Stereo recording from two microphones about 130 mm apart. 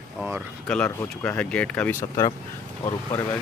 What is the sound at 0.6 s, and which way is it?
Speech, 5° left (ahead or behind).